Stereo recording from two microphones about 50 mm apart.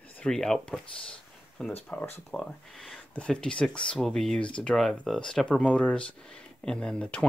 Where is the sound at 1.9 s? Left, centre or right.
Left.